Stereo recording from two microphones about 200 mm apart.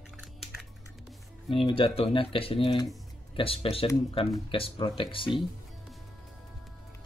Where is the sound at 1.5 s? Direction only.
25° left (ahead or behind).